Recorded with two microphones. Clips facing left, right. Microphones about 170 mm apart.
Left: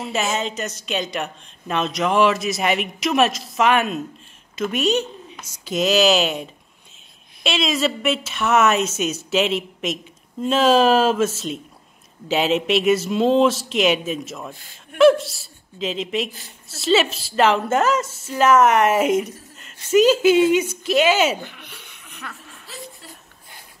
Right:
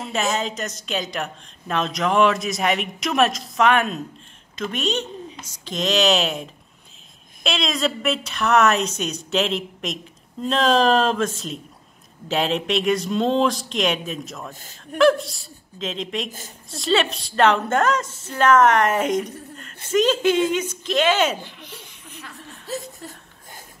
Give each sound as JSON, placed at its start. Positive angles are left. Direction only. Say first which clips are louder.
{"t": 0.0, "sound": "speech", "louder": "even", "side_deg": 5}
{"t": 14.5, "sound": "a man's voice", "louder": "right 4 dB", "side_deg": -45}
{"t": 15.0, "sound": "speech", "louder": "left 3 dB", "side_deg": 0}
{"t": 16.3, "sound": "a man's voice", "louder": "right 3 dB", "side_deg": -45}
{"t": 16.6, "sound": "speech", "louder": "left 2 dB", "side_deg": 5}
{"t": 21.4, "sound": "chuckle", "louder": "left 1 dB", "side_deg": 60}
{"t": 22.7, "sound": "a sound", "louder": "right 8 dB", "side_deg": -45}